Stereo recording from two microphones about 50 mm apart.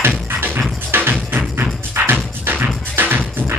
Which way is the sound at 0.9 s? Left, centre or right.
Right.